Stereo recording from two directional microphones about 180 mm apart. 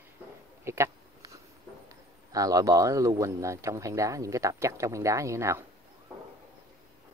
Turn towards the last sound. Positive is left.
turn(degrees=-15)  # may be behind; listen again after turning